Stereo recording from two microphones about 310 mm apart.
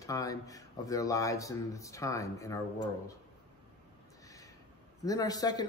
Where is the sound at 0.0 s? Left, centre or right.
Centre.